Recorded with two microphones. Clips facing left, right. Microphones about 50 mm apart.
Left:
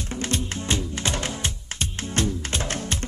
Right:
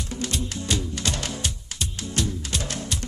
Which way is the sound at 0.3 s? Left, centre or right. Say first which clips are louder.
Left 3 dB; left.